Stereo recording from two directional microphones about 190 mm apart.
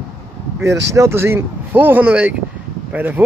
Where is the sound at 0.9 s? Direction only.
15° right (ahead or behind).